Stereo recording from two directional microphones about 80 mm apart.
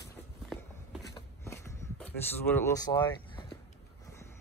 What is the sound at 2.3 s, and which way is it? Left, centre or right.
Speech, left.